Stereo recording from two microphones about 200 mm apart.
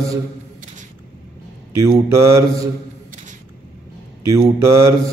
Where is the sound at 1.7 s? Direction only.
15° right (ahead or behind).